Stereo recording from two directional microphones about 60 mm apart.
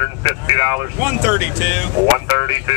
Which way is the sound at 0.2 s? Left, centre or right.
Right.